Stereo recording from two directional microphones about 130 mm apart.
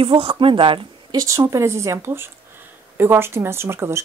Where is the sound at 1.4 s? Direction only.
20° right (ahead or behind).